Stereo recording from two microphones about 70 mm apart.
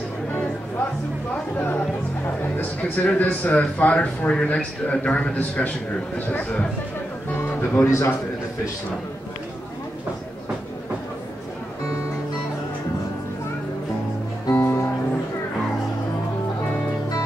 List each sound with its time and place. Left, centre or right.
1.6 s a man's voice: left
7.3 s music: left
7.8 s a man's voice: left
14.5 s music: left